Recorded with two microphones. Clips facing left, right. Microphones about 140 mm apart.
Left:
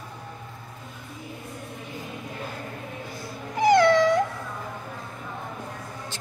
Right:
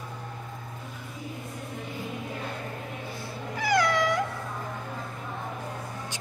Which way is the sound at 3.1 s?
15° left (ahead or behind).